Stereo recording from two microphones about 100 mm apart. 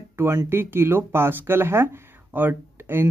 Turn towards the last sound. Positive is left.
turn(degrees=-20)  # may be behind; listen again after turning